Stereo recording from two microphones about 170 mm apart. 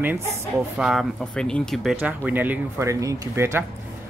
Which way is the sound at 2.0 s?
10° right (ahead or behind).